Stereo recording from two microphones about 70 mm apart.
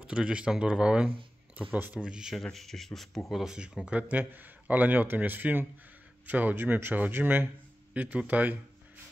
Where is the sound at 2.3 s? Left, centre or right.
Centre.